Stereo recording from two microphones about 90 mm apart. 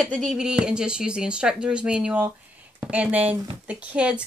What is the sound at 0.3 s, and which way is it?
Speech, 5° right (ahead or behind).